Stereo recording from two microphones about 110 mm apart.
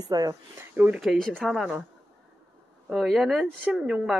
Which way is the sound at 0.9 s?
Centre (ahead or behind).